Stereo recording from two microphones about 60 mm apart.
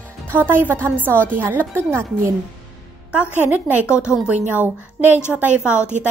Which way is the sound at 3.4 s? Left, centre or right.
Right.